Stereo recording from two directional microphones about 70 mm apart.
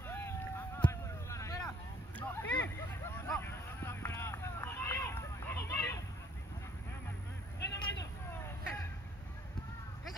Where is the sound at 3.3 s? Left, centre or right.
Left.